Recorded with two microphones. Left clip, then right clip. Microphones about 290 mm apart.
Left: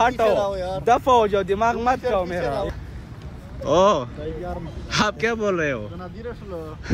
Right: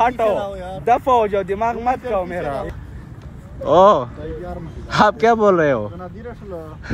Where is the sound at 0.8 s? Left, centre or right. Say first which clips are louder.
Right 2 dB; centre.